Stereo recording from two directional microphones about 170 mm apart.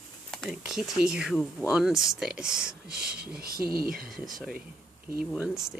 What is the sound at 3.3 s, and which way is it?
Speech, 60° right (ahead or behind).